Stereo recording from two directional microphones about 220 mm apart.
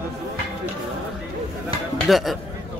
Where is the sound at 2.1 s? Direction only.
Centre (ahead or behind).